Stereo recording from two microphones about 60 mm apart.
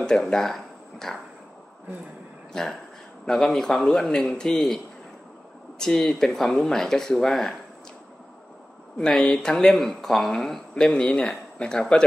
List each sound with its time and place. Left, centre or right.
0.0 s speech: centre
2.5 s speech: centre
5.8 s speech: centre
8.9 s speech: centre